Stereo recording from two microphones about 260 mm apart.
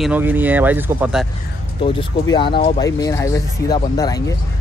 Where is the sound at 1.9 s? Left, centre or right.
Centre.